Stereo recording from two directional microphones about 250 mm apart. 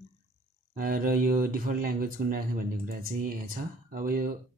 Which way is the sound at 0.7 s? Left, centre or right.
Right.